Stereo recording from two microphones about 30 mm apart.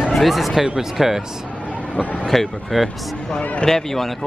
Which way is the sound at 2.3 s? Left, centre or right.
Centre.